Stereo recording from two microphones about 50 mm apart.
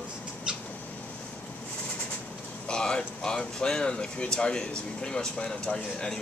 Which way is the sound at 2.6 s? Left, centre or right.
Centre.